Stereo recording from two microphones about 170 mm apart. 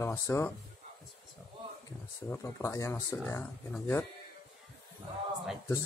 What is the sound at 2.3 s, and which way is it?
Speech, 15° left (ahead or behind).